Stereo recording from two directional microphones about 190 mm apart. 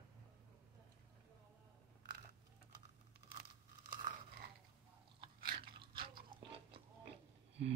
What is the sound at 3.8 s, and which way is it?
Crunch, 45° right (ahead or behind).